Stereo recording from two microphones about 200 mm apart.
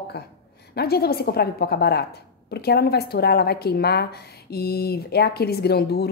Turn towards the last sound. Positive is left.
turn(degrees=55)  # may be behind; listen again after turning